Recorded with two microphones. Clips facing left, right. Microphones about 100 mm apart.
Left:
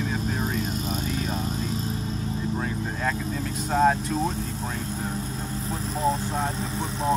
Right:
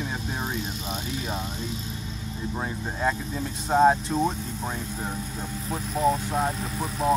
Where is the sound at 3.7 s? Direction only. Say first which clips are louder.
Right 2 dB; 25° right (ahead or behind).